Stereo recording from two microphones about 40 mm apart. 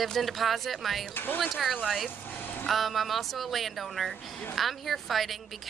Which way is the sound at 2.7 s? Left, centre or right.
Centre.